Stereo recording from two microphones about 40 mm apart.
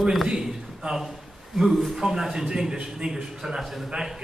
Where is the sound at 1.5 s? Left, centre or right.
Centre.